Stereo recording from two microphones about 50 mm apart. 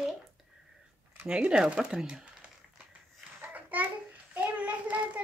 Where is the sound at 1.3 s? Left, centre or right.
Centre.